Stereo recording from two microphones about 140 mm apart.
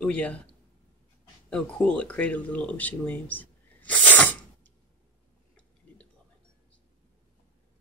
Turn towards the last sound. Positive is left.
turn(degrees=10)  # may be behind; listen again after turning